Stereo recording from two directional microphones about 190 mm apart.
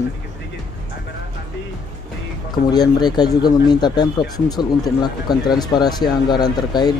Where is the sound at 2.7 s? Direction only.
20° left (ahead or behind).